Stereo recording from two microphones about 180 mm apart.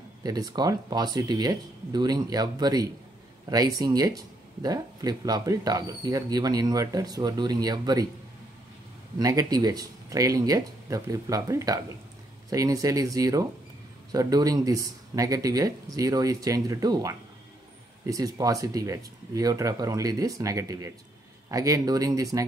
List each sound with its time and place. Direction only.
0.2 s speech: 20° right (ahead or behind)
9.2 s speech: 20° right (ahead or behind)